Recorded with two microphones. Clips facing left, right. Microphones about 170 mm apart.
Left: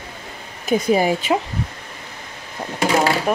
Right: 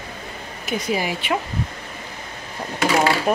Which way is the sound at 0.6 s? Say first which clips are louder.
Left 7 dB; 40° left (ahead or behind).